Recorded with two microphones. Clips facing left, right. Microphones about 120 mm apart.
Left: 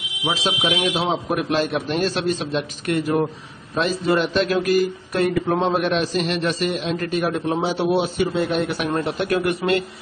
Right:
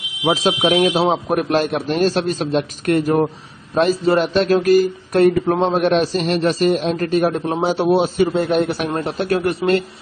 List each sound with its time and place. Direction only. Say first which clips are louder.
0.2 s a man's voice: right 7 dB; 45° right (ahead or behind)